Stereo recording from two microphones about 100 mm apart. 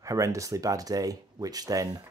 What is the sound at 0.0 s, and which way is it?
Speech, 35° right (ahead or behind).